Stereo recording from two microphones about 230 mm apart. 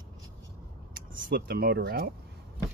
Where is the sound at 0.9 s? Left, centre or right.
Right.